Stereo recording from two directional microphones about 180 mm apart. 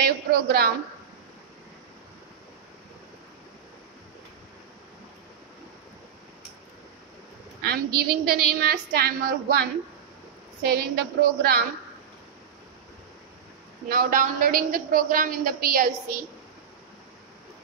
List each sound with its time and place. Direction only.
0.0 s a woman's voice: 60° right (ahead or behind)
7.6 s a woman's voice: 60° right (ahead or behind)
13.8 s a woman's voice: 50° right (ahead or behind)